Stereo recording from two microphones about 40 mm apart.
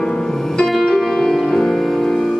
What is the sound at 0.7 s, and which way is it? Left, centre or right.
Music, centre.